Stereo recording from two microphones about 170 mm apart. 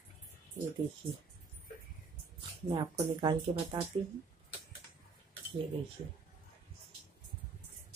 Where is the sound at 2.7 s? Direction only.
35° right (ahead or behind).